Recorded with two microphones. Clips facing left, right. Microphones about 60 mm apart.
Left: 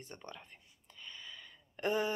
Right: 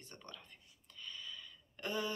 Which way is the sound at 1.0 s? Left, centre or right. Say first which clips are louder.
Right 1 dB; left.